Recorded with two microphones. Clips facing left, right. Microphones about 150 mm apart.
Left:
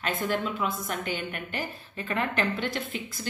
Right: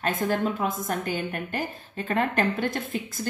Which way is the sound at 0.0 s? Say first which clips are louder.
Right 3 dB; 45° right (ahead or behind).